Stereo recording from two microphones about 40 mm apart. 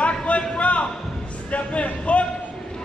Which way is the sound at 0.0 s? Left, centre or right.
Left.